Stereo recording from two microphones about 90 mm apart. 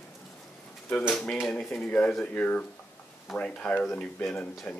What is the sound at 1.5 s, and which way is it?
Speech, 5° left (ahead or behind).